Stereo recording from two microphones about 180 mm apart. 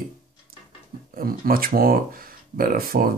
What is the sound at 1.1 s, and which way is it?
Speech, 55° right (ahead or behind).